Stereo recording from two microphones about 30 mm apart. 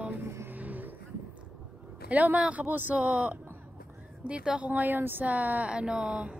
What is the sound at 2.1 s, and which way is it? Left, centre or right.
Speech, right.